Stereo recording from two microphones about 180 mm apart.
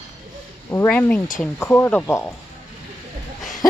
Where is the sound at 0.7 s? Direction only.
10° left (ahead or behind).